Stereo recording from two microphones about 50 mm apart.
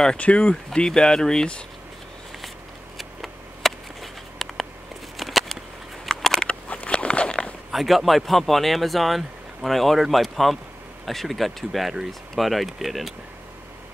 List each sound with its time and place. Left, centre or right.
0.2 s speech: left
3.0 s a sound: centre
6.4 s walk: left
7.7 s speech: centre